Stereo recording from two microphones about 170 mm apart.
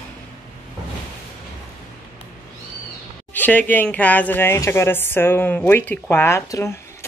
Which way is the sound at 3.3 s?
10° left (ahead or behind).